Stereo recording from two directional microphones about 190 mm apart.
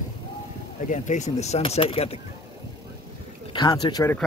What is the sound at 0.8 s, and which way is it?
Speech, 40° left (ahead or behind).